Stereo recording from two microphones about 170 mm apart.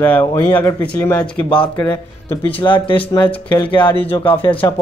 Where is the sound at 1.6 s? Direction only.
20° left (ahead or behind).